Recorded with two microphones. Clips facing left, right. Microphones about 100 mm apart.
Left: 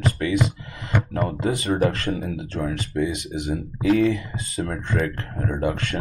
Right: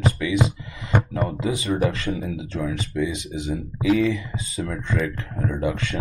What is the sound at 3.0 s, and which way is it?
Speech, 55° left (ahead or behind).